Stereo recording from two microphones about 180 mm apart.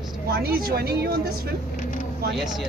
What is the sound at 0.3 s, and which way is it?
Speech, 60° right (ahead or behind).